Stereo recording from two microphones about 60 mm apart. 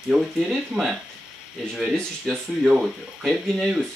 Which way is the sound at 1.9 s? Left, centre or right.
Centre.